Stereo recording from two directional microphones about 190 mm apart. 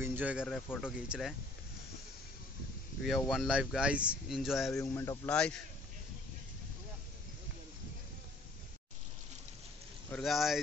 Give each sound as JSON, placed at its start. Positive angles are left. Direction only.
{"t": 0.0, "sound": "speech", "side_deg": -10}
{"t": 3.3, "sound": "speech", "side_deg": -5}
{"t": 4.9, "sound": "speech", "side_deg": 15}
{"t": 5.3, "sound": "speech", "side_deg": 5}
{"t": 10.1, "sound": "speech", "side_deg": 0}